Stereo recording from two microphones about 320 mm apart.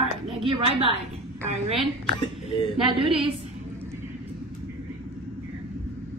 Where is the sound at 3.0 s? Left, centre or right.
Centre.